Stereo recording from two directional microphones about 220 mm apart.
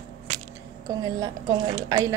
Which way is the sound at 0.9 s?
15° right (ahead or behind).